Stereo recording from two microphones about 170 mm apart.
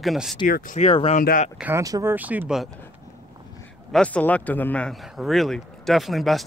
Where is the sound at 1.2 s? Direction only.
55° left (ahead or behind).